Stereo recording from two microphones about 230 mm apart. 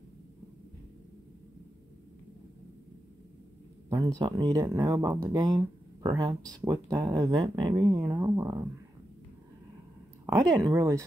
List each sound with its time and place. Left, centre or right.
3.9 s speech: centre
10.2 s speech: centre